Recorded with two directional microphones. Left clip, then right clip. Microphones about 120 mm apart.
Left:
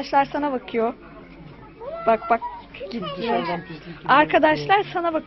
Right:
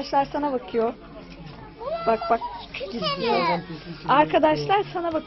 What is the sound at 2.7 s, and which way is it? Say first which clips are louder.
Children playing: right 3 dB; 55° right (ahead or behind).